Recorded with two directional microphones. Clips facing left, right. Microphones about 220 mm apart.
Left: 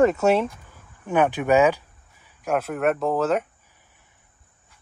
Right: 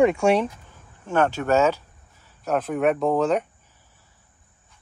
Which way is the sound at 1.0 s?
15° left (ahead or behind).